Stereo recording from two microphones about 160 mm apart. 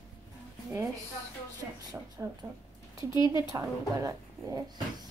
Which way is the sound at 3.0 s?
25° left (ahead or behind).